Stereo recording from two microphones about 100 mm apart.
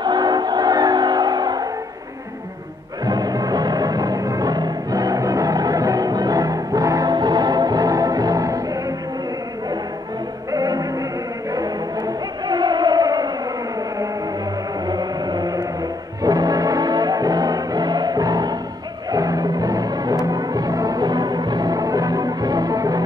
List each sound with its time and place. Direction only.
0.0 s music: 45° right (ahead or behind)
3.1 s music: 40° right (ahead or behind)
10.5 s music: 35° right (ahead or behind)
12.4 s music: 45° right (ahead or behind)
14.9 s a sound: 45° right (ahead or behind)
16.2 s music: 40° right (ahead or behind)